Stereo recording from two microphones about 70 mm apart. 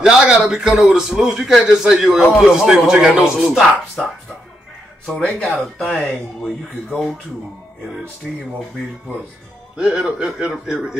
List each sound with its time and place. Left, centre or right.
0.0 s a man's voice: centre
5.0 s speech: centre
5.9 s speech: centre
8.2 s a man's voice: centre
9.8 s a man's voice: centre